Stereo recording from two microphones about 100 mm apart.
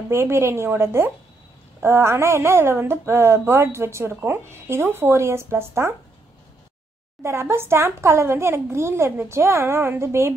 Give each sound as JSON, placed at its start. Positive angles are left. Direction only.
{"t": 0.1, "sound": "a woman's voice", "side_deg": -25}
{"t": 7.2, "sound": "a woman's voice", "side_deg": -25}